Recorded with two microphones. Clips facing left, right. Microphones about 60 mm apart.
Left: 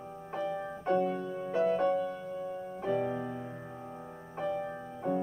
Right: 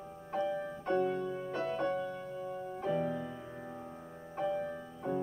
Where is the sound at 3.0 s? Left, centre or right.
Left.